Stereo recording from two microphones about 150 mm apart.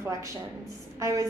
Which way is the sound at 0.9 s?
20° right (ahead or behind).